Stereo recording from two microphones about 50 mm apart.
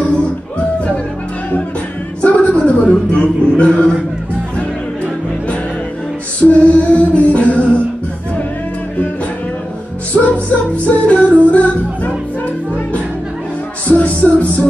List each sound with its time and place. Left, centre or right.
0.0 s music: left
2.2 s a woman's voice: left
6.4 s music: left
10.1 s music: centre
10.9 s music: left
13.8 s music: left